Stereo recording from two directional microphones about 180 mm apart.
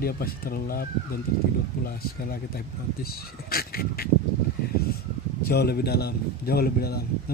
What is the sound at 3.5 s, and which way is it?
Speech, 55° left (ahead or behind).